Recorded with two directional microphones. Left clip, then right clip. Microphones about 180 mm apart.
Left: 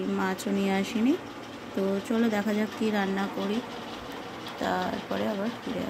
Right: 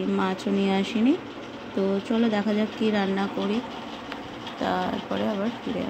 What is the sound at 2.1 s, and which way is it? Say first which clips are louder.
Speech: right 3 dB; 5° left (ahead or behind).